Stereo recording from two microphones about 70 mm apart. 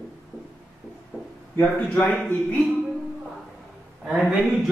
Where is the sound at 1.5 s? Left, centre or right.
Centre.